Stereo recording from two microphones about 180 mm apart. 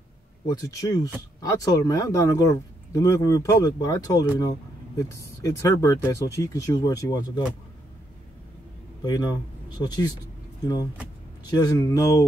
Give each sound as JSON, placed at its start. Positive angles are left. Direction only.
{"t": 0.5, "sound": "speech", "side_deg": 20}
{"t": 9.0, "sound": "speech", "side_deg": 20}
{"t": 11.5, "sound": "speech", "side_deg": 20}